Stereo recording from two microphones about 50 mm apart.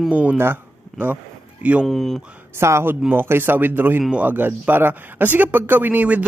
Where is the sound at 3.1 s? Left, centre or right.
Right.